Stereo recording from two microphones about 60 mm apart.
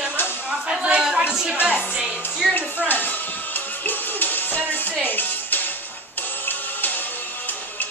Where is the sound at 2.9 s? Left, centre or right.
Left.